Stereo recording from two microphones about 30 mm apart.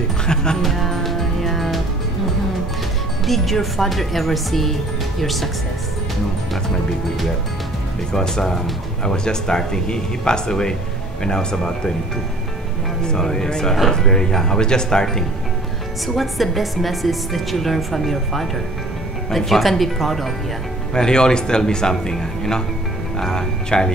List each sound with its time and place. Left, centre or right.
0.3 s speech: left
0.6 s music: centre
3.3 s a woman's voice: centre
8.1 s speech: left
13.0 s speech: left
16.2 s a woman's voice: centre
20.9 s speech: left